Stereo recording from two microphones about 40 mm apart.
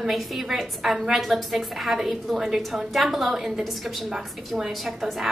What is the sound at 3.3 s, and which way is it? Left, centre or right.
Speech, centre.